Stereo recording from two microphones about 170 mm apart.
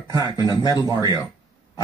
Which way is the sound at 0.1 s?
25° right (ahead or behind).